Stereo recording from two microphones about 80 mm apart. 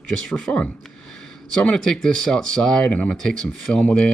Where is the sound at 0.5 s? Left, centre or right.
Left.